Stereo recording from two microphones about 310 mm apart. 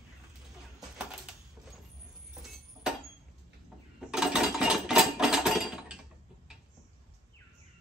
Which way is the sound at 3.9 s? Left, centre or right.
Centre.